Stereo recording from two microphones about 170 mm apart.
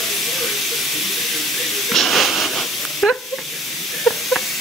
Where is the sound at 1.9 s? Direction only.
Centre (ahead or behind).